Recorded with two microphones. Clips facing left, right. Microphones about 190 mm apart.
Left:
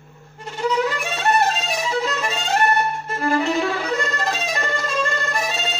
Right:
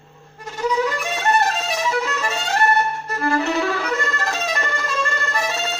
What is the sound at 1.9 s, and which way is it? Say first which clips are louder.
Violin: even; 20° left (ahead or behind).